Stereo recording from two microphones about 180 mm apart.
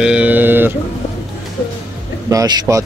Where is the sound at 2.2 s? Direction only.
20° right (ahead or behind).